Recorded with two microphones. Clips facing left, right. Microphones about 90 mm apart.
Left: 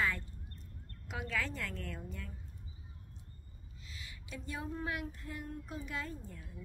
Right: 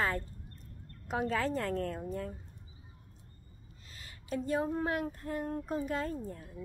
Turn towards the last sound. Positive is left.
turn(degrees=-40)  # may be behind; listen again after turning